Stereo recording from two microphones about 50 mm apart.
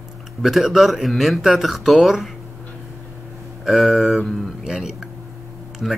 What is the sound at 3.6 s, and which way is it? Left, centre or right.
Speech, centre.